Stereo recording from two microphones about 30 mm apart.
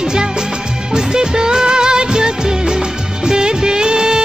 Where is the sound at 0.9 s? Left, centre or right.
Right.